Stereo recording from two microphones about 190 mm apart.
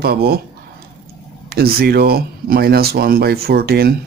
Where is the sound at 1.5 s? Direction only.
55° right (ahead or behind).